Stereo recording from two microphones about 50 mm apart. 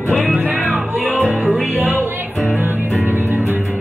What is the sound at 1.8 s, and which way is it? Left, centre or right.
Music, right.